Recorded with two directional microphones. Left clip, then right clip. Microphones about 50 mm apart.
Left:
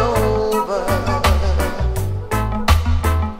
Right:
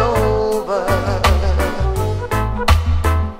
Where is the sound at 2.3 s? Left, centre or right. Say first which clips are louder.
Even; left.